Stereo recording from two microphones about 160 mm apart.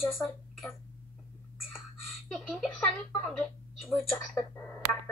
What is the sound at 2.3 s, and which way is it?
Speech, 5° left (ahead or behind).